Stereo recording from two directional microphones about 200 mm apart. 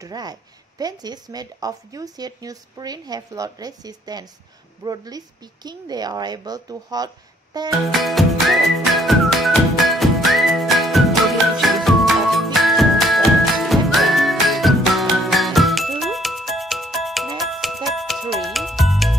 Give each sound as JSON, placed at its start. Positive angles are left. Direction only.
{"t": 0.0, "sound": "speech", "side_deg": -20}
{"t": 7.9, "sound": "music", "side_deg": 0}